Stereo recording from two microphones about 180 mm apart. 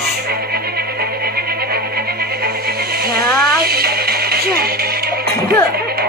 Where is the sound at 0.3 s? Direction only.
60° right (ahead or behind).